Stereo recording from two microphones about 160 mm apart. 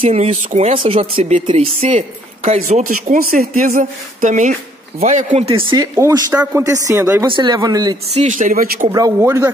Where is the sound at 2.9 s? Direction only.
60° right (ahead or behind).